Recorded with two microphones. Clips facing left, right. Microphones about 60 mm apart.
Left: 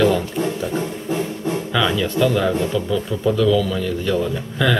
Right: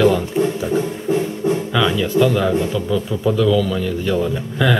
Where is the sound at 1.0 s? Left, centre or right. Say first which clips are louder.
Right 5 dB; centre.